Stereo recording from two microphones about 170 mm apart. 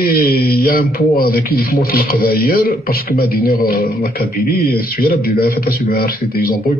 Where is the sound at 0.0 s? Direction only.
60° left (ahead or behind).